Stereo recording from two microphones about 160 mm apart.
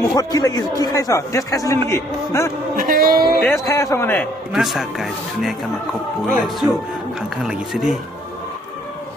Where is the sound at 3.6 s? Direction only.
20° left (ahead or behind).